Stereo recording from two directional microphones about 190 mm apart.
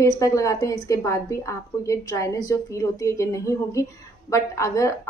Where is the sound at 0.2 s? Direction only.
15° left (ahead or behind).